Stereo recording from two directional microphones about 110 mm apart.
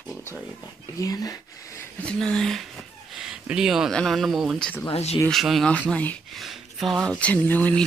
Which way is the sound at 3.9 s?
Centre (ahead or behind).